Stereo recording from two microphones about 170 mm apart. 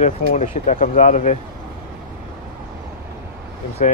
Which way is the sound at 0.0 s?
45° left (ahead or behind).